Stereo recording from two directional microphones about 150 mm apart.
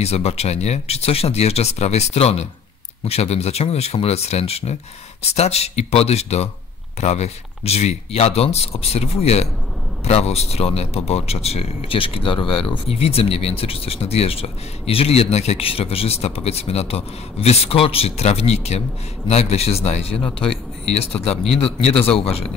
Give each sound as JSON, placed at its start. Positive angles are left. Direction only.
{"t": 0.0, "sound": "speech", "side_deg": 45}